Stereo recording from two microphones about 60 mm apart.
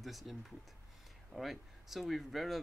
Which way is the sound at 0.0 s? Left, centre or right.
Centre.